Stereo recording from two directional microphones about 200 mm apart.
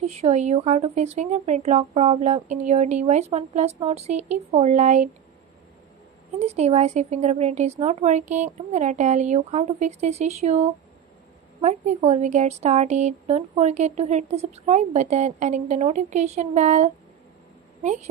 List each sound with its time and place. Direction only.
0.0 s speech: 30° right (ahead or behind)
6.4 s speech: 35° right (ahead or behind)